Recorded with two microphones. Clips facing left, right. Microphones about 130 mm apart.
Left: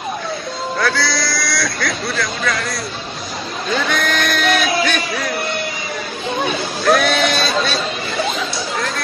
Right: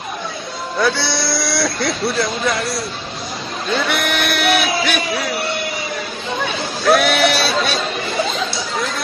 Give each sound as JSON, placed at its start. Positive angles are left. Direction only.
{"t": 0.7, "sound": "speech", "side_deg": -25}
{"t": 3.9, "sound": "speech", "side_deg": -10}
{"t": 6.8, "sound": "speech", "side_deg": -5}